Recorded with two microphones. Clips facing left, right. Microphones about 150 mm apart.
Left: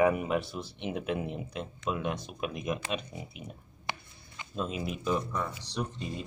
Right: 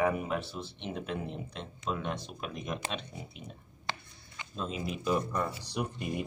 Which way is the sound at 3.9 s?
15° left (ahead or behind).